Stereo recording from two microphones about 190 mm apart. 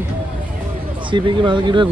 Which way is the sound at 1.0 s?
25° right (ahead or behind).